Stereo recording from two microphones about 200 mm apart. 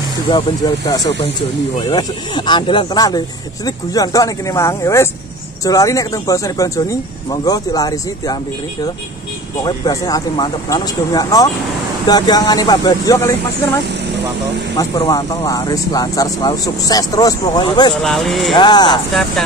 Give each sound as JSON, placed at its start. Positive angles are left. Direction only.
{"t": 0.3, "sound": "speech", "side_deg": 20}
{"t": 9.6, "sound": "speech", "side_deg": 20}
{"t": 14.8, "sound": "speech", "side_deg": 20}
{"t": 18.0, "sound": "speech", "side_deg": 0}
{"t": 18.6, "sound": "speech", "side_deg": 20}